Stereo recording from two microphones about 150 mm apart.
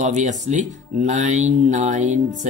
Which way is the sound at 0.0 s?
55° right (ahead or behind).